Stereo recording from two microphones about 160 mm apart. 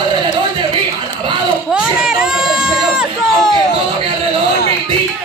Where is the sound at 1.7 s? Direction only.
5° right (ahead or behind).